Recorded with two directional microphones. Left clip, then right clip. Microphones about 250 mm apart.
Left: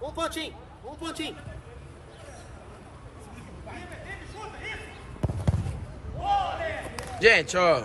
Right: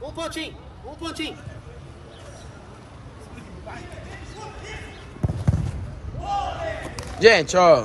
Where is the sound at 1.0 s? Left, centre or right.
Centre.